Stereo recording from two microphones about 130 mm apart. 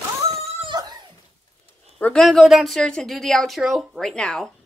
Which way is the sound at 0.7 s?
30° right (ahead or behind).